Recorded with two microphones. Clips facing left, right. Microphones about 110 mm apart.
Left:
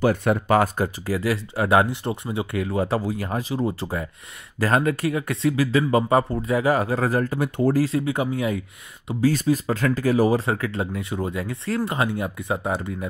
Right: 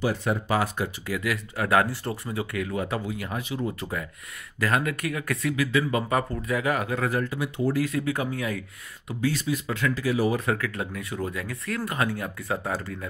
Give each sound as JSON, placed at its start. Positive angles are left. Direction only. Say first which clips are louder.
{"t": 0.0, "sound": "speech", "louder": "left 6 dB", "side_deg": 55}
{"t": 7.8, "sound": "speech", "louder": "left 4 dB", "side_deg": 30}
{"t": 9.2, "sound": "speech", "louder": "left 6 dB", "side_deg": 40}